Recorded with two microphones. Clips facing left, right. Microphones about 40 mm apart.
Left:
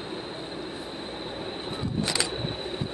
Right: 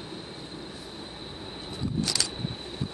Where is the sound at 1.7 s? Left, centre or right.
Left.